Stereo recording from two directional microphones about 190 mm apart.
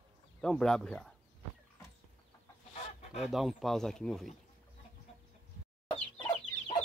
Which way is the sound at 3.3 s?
Centre (ahead or behind).